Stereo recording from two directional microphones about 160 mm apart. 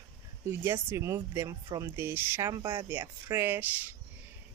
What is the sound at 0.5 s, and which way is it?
Speech, 15° right (ahead or behind).